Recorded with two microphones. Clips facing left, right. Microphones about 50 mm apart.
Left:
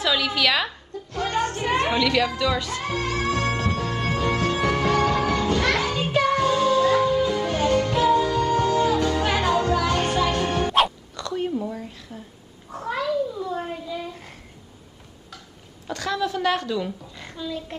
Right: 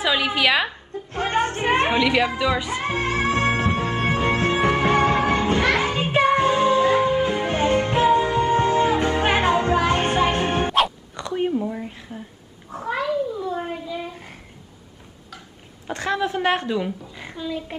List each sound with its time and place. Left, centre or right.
0.0 s a woman's voice: right
0.9 s a woman's voice: right
2.9 s music: right
11.1 s a sound: right
12.7 s cat: centre
15.9 s a woman's voice: right
17.1 s a sound: centre